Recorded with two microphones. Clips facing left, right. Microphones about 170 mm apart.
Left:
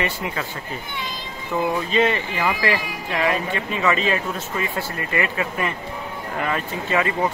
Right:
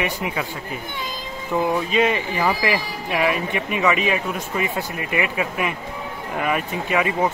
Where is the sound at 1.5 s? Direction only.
5° right (ahead or behind).